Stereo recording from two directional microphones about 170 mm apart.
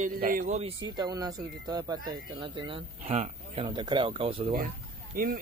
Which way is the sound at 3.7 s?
25° right (ahead or behind).